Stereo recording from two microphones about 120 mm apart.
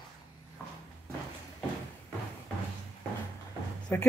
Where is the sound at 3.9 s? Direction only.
20° left (ahead or behind).